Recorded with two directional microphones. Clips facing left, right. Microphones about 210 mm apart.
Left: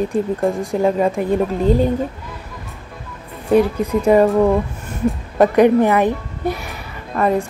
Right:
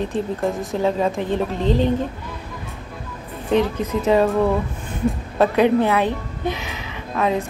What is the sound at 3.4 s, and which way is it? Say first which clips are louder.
Speech: left 4 dB; 10° left (ahead or behind).